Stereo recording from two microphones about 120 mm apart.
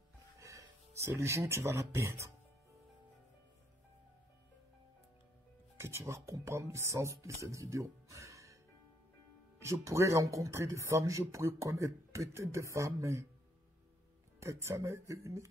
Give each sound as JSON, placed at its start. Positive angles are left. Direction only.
{"t": 0.4, "sound": "music", "side_deg": -25}
{"t": 1.0, "sound": "speech", "side_deg": -25}
{"t": 5.8, "sound": "speech", "side_deg": -20}
{"t": 9.6, "sound": "speech", "side_deg": -25}
{"t": 14.4, "sound": "speech", "side_deg": -25}